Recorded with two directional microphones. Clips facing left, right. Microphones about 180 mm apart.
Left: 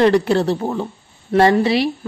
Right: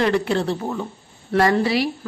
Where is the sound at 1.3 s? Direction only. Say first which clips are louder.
Left 4 dB; 25° left (ahead or behind).